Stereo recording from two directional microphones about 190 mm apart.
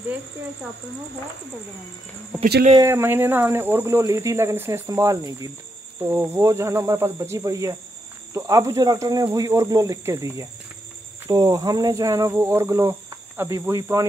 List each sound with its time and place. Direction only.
2.4 s speech: 45° right (ahead or behind)
2.8 s speech: 15° right (ahead or behind)